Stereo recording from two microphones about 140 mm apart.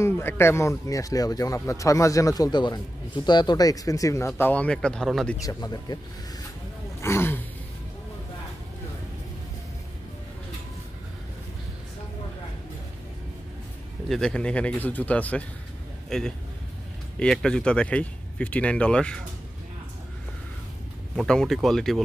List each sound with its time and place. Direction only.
0.0 s speech: 15° left (ahead or behind)
4.4 s speech: 10° left (ahead or behind)
5.4 s speech: 25° left (ahead or behind)
7.0 s speech: 20° left (ahead or behind)
14.0 s speech: 5° left (ahead or behind)
21.2 s speech: centre (ahead or behind)